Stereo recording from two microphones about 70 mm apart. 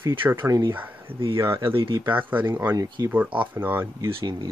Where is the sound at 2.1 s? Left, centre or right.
Right.